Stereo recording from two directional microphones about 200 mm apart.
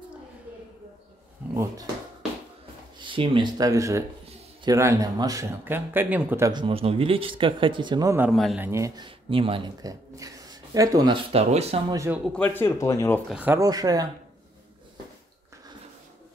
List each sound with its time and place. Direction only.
1.5 s speech: 15° right (ahead or behind)
3.0 s speech: 25° right (ahead or behind)
8.3 s speech: centre (ahead or behind)
8.6 s speech: 15° right (ahead or behind)
11.3 s speech: 30° right (ahead or behind)
11.9 s speech: 15° right (ahead or behind)
12.4 s speech: 10° left (ahead or behind)
13.3 s speech: 10° right (ahead or behind)